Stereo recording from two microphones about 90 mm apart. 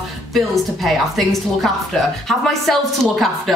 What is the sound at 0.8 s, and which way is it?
A woman's voice, centre (ahead or behind).